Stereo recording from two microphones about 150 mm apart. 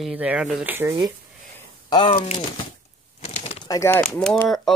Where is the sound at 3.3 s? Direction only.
45° left (ahead or behind).